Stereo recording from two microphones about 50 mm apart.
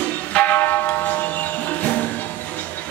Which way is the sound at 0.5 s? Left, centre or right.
Left.